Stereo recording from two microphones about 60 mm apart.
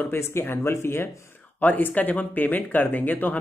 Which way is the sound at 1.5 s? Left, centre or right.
Left.